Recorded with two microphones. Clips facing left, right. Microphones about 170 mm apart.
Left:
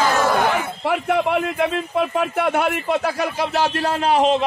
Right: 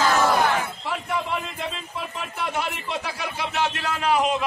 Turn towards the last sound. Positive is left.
turn(degrees=30)  # may be behind; listen again after turning